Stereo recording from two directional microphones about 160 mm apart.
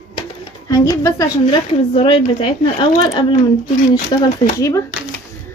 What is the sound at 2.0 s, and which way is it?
Speech, 35° left (ahead or behind).